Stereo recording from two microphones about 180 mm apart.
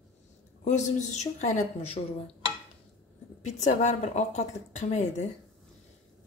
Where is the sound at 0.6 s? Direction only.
40° left (ahead or behind).